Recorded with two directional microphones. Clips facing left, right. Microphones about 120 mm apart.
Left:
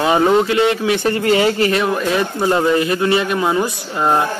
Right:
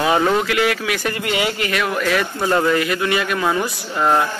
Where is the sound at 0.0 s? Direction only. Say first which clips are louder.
Left 3 dB; 20° left (ahead or behind).